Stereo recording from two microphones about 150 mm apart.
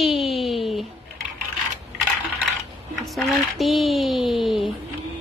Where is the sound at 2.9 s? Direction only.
Centre (ahead or behind).